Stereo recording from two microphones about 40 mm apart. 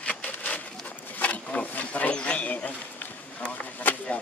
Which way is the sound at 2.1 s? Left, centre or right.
Left.